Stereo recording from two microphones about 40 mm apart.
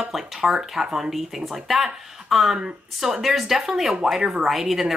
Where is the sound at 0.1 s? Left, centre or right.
Centre.